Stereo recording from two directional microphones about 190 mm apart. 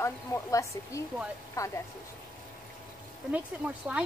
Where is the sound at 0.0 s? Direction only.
15° left (ahead or behind).